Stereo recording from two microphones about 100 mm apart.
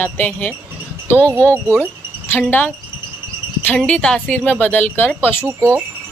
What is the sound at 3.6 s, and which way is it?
Speech, 10° left (ahead or behind).